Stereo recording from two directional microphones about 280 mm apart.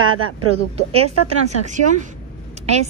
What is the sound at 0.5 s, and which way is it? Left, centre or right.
Speech, right.